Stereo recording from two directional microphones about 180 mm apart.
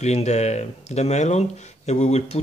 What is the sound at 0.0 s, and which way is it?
Speech, 40° left (ahead or behind).